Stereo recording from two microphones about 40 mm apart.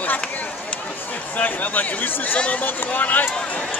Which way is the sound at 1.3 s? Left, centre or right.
Left.